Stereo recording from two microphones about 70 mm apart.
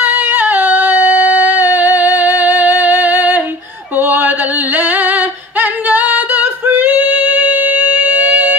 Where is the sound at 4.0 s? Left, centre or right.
Right.